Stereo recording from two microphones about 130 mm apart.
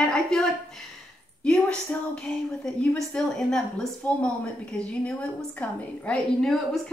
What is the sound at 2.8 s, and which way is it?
A woman's voice, 5° left (ahead or behind).